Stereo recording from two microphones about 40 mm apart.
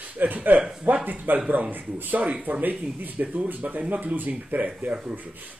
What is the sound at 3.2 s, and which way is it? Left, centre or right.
Speech, right.